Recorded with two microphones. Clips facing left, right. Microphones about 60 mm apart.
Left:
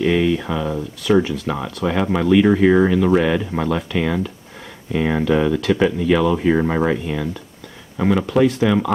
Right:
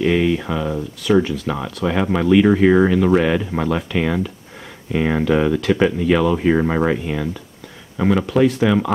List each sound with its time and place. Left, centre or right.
0.0 s speech: centre